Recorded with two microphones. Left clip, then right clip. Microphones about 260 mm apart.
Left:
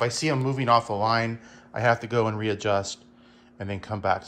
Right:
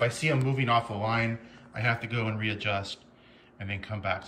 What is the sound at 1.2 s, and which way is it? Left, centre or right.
Speech, centre.